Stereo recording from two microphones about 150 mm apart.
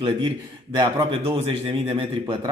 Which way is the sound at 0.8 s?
35° right (ahead or behind).